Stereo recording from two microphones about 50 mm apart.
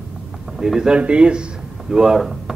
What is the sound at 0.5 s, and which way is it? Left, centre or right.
Speech, centre.